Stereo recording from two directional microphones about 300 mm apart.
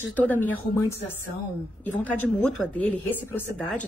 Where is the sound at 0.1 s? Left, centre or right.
Centre.